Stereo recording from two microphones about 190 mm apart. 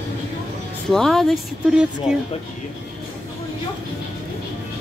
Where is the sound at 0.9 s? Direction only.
Centre (ahead or behind).